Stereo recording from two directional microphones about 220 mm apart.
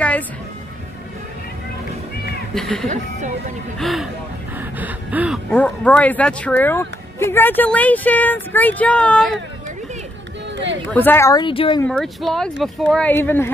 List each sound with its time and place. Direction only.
2.5 s speech: centre (ahead or behind)
4.6 s gasp: 5° right (ahead or behind)
5.5 s speech: 5° left (ahead or behind)
10.9 s speech: 10° left (ahead or behind)
11.8 s speech: 5° left (ahead or behind)